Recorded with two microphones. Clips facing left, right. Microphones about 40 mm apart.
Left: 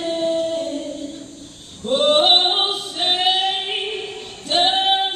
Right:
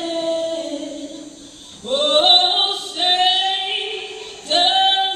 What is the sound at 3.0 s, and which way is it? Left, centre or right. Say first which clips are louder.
Female singing: right 2 dB; centre.